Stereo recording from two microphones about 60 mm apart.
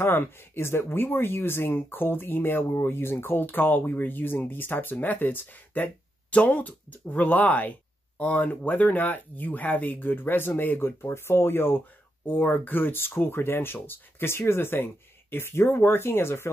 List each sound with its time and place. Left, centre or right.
0.0 s speech: left
10.8 s speech: left